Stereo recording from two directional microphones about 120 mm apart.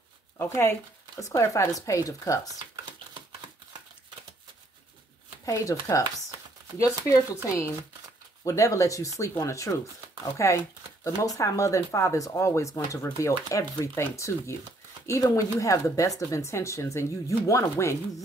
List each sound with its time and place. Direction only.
0.4 s speech: 20° left (ahead or behind)
5.4 s speech: 25° left (ahead or behind)
7.4 s speech: 20° left (ahead or behind)